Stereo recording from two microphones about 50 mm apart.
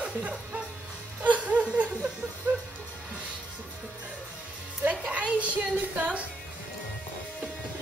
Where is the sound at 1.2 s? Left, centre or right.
Right.